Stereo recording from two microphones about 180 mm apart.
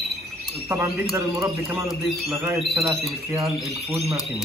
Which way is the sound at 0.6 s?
10° right (ahead or behind).